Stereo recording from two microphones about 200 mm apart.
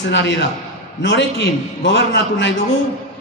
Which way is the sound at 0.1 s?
60° left (ahead or behind).